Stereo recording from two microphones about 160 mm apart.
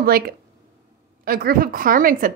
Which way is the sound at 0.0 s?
70° right (ahead or behind).